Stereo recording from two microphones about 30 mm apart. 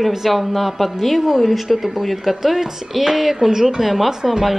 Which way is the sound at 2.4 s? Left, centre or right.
Centre.